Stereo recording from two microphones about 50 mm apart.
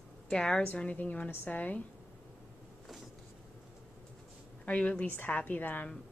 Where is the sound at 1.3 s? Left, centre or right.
Left.